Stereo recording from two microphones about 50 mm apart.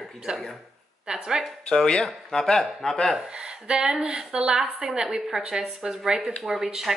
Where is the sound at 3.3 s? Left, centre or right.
Centre.